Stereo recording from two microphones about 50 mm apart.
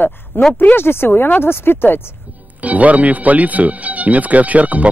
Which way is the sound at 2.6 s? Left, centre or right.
Right.